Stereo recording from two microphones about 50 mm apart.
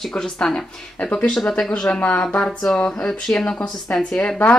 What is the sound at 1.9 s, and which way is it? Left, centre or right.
A woman's voice, left.